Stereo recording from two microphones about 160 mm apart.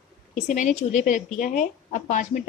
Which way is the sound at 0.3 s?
50° left (ahead or behind).